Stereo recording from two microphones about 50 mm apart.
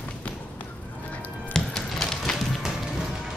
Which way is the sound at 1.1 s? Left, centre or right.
Left.